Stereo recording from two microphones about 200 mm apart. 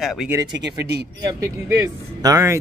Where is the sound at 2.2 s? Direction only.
15° right (ahead or behind).